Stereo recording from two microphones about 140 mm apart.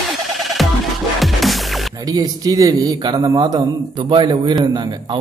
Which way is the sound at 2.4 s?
25° right (ahead or behind).